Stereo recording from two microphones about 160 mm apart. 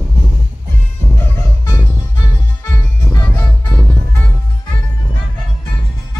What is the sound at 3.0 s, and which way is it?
Music, 15° left (ahead or behind).